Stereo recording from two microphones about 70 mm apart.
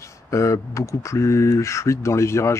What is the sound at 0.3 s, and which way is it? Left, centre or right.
Speech, left.